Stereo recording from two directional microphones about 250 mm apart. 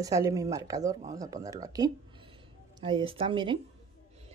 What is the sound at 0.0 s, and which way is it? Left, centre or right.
A woman's voice, centre.